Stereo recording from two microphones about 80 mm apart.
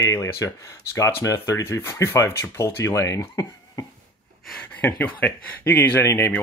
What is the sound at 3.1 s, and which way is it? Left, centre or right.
Speech, left.